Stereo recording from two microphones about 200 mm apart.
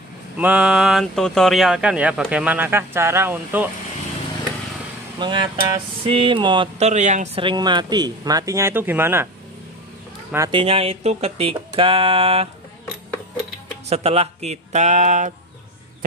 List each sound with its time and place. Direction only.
0.4 s speech: 5° right (ahead or behind)
5.2 s speech: 20° right (ahead or behind)
7.4 s speech: 20° right (ahead or behind)
10.5 s speech: 30° right (ahead or behind)
13.8 s speech: 30° right (ahead or behind)